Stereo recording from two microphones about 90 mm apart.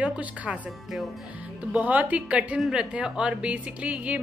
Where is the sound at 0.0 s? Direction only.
15° right (ahead or behind).